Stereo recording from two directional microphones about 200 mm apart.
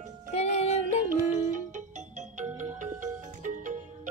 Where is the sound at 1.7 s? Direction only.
35° right (ahead or behind).